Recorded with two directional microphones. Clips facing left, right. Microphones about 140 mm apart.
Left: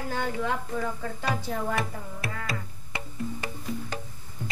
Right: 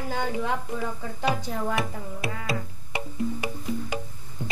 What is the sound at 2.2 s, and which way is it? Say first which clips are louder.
Music: right 4 dB; 20° right (ahead or behind).